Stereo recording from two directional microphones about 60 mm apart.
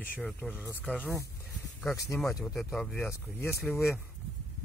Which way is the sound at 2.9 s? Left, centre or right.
Left.